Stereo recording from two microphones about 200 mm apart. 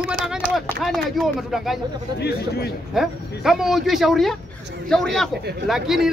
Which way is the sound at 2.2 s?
55° left (ahead or behind).